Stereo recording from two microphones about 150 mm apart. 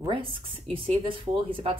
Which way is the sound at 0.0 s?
35° right (ahead or behind).